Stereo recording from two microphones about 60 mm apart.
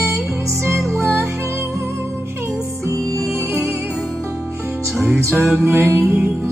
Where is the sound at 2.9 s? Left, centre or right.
Right.